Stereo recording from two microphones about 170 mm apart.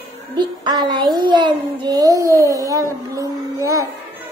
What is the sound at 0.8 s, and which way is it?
A child's voice, 25° right (ahead or behind).